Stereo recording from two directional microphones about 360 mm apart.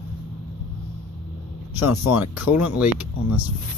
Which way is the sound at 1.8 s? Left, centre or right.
Left.